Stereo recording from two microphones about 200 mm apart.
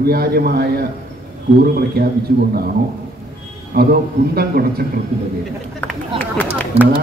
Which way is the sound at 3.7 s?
50° right (ahead or behind).